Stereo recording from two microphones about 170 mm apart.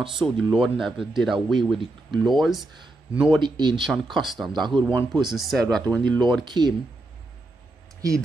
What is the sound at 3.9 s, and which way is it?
Speech, centre (ahead or behind).